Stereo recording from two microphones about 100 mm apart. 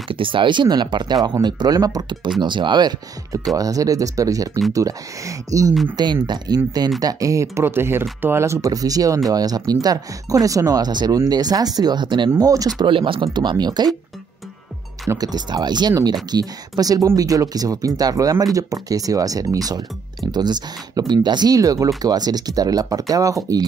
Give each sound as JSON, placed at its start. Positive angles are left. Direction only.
{"t": 0.1, "sound": "speech", "side_deg": -60}
{"t": 3.3, "sound": "speech", "side_deg": -35}
{"t": 6.2, "sound": "speech", "side_deg": -45}
{"t": 12.4, "sound": "speech", "side_deg": -35}
{"t": 12.8, "sound": "speech", "side_deg": -60}
{"t": 15.0, "sound": "speech", "side_deg": -40}